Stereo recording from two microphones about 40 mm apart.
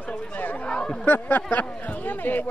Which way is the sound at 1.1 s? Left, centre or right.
Left.